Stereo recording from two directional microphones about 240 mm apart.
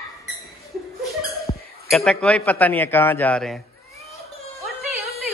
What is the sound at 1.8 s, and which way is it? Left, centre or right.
A man's voice, centre.